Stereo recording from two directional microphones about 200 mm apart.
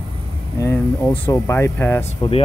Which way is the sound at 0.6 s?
15° left (ahead or behind).